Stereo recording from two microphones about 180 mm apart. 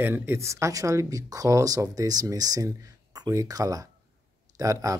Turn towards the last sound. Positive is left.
turn(degrees=-15)  # may be behind; listen again after turning